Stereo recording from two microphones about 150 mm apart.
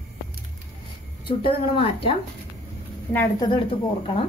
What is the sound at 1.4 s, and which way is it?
Speech, 35° left (ahead or behind).